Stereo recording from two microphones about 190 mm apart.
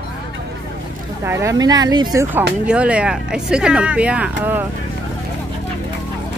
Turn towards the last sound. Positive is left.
turn(degrees=-10)  # may be behind; listen again after turning